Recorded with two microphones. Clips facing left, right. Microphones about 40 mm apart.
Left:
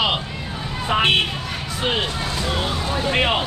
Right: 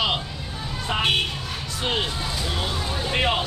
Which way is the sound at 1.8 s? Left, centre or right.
Centre.